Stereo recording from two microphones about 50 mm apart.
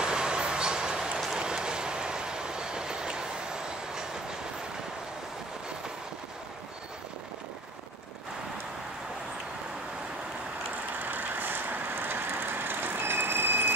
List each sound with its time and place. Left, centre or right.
0.0 s vehicle: centre
1.4 s train: centre
11.0 s vehicle: right